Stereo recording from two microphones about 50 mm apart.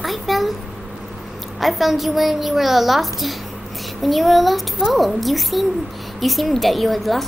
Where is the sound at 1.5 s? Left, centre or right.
Centre.